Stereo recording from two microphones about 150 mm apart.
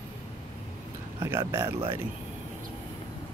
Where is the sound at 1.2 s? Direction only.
20° right (ahead or behind).